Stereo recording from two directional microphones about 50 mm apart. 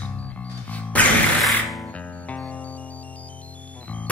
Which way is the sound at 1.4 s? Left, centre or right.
Centre.